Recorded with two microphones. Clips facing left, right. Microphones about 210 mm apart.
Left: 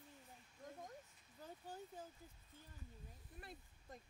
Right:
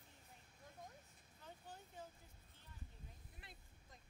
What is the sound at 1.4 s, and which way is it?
Speech, 40° left (ahead or behind).